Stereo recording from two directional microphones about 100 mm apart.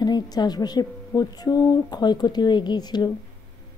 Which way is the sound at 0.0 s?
45° left (ahead or behind).